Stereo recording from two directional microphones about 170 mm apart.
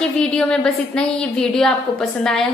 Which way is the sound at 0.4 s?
5° left (ahead or behind).